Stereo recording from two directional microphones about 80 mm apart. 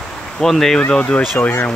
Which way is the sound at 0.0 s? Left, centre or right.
Centre.